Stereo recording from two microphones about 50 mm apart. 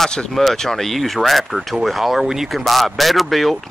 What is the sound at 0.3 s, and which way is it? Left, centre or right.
Speech, centre.